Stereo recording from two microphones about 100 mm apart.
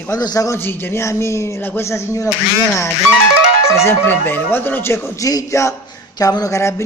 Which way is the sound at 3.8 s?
20° left (ahead or behind).